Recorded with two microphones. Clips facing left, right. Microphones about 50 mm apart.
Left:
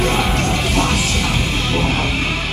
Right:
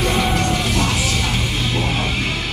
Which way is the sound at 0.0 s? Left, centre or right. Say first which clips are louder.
Left 1 dB; left.